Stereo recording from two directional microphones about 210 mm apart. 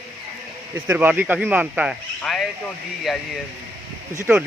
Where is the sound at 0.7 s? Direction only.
10° right (ahead or behind).